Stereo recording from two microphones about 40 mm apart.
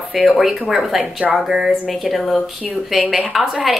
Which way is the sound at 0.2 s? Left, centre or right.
Centre.